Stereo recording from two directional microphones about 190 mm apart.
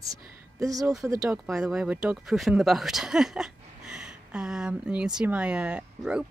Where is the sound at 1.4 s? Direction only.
Centre (ahead or behind).